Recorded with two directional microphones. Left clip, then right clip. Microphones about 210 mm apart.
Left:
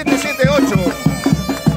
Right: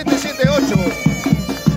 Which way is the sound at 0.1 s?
Centre (ahead or behind).